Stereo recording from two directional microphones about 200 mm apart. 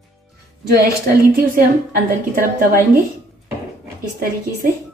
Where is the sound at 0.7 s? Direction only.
50° right (ahead or behind).